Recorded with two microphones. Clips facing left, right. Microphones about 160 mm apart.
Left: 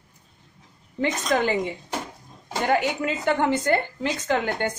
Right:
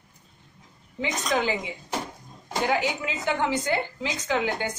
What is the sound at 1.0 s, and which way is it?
A woman's voice, 50° left (ahead or behind).